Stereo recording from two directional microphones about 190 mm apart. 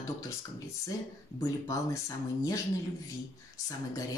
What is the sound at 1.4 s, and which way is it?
Speech, 15° left (ahead or behind).